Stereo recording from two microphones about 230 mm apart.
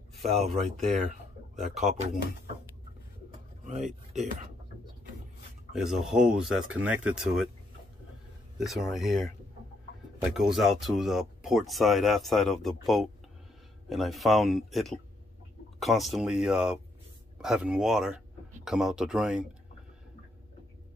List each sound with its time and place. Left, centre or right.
0.2 s speech: centre
3.6 s speech: right
5.7 s speech: centre
8.5 s speech: centre